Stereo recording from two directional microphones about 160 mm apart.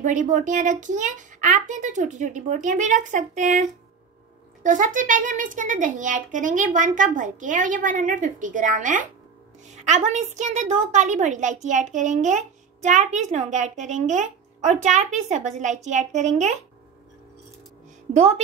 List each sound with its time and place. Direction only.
0.0 s a woman's voice: 50° right (ahead or behind)
4.6 s a woman's voice: 55° right (ahead or behind)
18.1 s a woman's voice: 40° right (ahead or behind)